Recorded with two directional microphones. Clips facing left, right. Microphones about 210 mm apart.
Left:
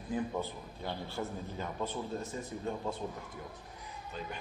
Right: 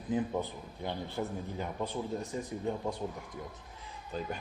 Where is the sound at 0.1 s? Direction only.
15° right (ahead or behind).